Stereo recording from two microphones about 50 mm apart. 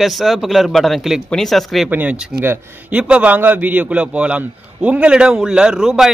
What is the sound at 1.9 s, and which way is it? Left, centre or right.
A man's voice, right.